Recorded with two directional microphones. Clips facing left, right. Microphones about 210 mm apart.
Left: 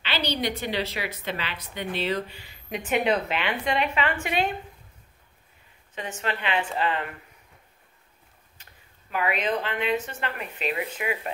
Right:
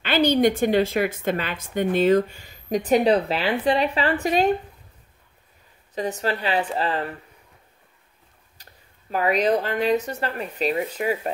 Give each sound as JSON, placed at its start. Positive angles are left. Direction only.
{"t": 0.0, "sound": "a woman's voice", "side_deg": -50}
{"t": 5.9, "sound": "speech", "side_deg": -35}
{"t": 8.6, "sound": "a sound", "side_deg": -35}
{"t": 9.1, "sound": "speech", "side_deg": -40}